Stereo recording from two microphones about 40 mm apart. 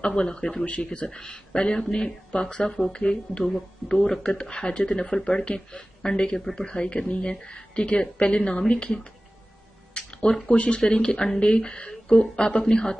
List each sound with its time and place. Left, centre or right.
0.0 s a woman's voice: left
10.5 s a woman's voice: left